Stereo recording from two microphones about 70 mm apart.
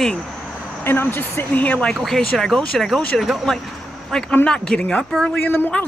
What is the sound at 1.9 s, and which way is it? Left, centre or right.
Speech, centre.